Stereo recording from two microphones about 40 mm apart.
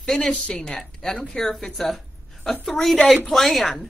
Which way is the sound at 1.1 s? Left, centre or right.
Centre.